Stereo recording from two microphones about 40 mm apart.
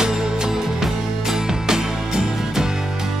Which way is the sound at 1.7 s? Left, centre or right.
Centre.